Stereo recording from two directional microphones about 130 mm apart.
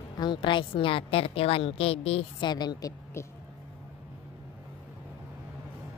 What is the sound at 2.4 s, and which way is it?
Speech, 35° left (ahead or behind).